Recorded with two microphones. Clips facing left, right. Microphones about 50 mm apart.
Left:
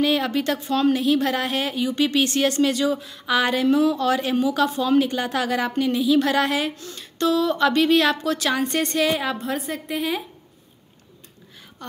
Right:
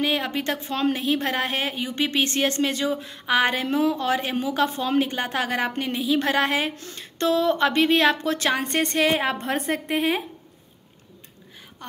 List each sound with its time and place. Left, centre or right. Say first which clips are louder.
0.0 s a woman's voice: left 3 dB; right
11.8 s speech: left 3 dB; centre